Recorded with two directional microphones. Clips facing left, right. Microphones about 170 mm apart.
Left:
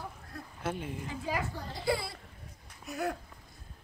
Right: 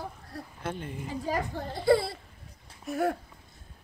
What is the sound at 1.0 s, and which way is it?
Speech, 40° right (ahead or behind).